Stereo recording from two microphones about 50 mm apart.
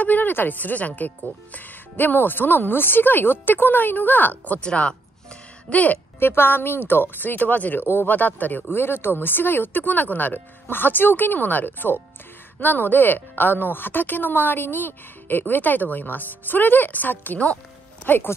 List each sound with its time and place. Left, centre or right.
0.0 s speech: left
4.6 s speech: left
6.1 s speech: left
7.8 s speech: left
8.1 s speech: left